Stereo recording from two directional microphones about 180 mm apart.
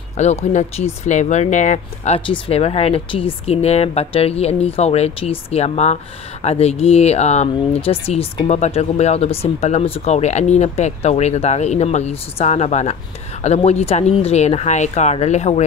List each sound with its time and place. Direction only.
0.2 s speech: 40° left (ahead or behind)